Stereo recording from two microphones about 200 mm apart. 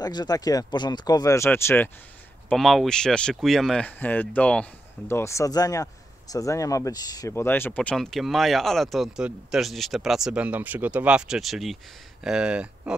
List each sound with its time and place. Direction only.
0.0 s speech: 20° left (ahead or behind)
2.5 s speech: centre (ahead or behind)